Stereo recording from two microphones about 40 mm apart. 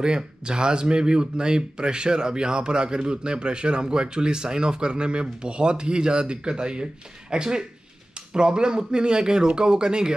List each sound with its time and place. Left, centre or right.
0.0 s speech: right